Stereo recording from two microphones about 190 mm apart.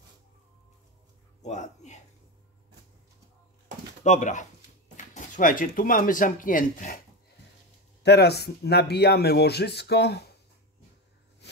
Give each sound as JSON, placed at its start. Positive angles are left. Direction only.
{"t": 1.4, "sound": "speech", "side_deg": 35}
{"t": 4.0, "sound": "speech", "side_deg": 40}
{"t": 8.0, "sound": "speech", "side_deg": 60}